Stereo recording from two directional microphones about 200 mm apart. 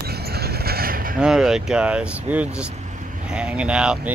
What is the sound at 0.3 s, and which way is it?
Vehicle, 50° right (ahead or behind).